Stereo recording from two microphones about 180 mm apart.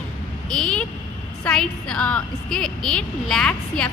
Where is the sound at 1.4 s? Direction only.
5° left (ahead or behind).